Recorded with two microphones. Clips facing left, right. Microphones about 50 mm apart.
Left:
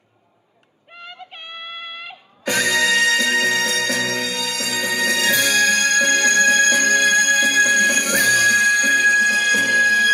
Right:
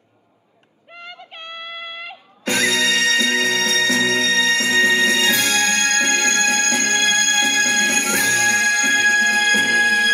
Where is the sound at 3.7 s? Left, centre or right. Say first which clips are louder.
Right 3 dB; right.